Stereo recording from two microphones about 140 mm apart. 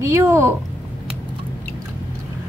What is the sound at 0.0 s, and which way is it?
Speech, 20° right (ahead or behind).